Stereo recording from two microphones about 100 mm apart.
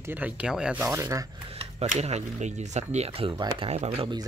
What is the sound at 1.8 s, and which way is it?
Speech, 90° right.